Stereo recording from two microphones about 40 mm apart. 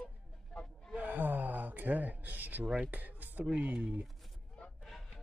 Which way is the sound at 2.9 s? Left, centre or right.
Right.